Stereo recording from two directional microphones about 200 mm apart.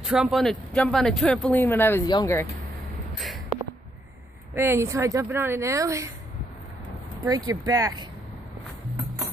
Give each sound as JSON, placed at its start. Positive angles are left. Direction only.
{"t": 0.0, "sound": "speech", "side_deg": 0}
{"t": 4.6, "sound": "a woman's voice", "side_deg": -15}
{"t": 7.2, "sound": "speech", "side_deg": -20}